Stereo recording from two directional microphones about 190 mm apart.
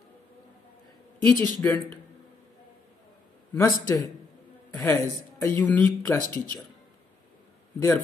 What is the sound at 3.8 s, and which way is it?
Speech, 20° left (ahead or behind).